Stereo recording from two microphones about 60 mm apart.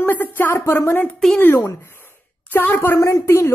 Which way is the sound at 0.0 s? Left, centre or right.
Left.